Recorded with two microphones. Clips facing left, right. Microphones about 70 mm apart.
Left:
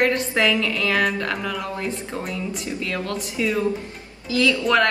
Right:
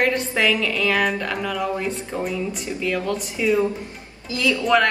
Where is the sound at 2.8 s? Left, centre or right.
Centre.